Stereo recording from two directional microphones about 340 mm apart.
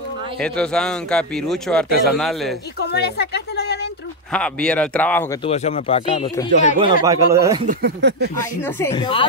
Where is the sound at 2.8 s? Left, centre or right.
Left.